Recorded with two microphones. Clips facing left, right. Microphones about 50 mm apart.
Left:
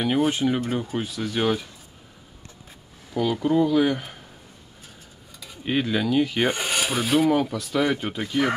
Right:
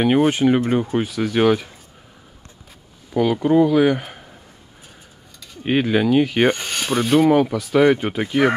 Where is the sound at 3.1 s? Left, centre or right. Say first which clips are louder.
Right 5 dB; centre.